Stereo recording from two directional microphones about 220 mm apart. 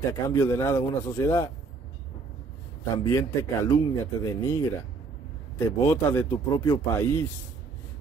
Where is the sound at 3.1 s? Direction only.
15° left (ahead or behind).